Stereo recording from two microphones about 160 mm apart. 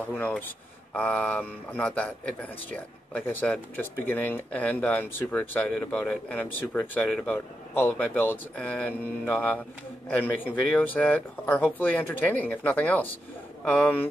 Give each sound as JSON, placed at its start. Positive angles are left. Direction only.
{"t": 0.2, "sound": "speech", "side_deg": 10}